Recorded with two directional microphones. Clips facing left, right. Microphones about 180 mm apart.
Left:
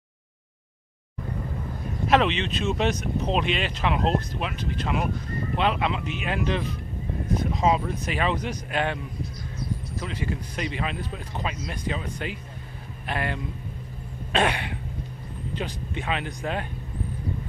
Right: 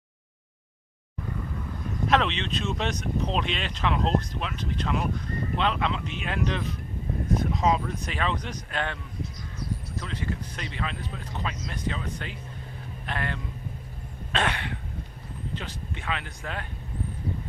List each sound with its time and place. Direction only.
2.0 s a man's voice: 5° left (ahead or behind)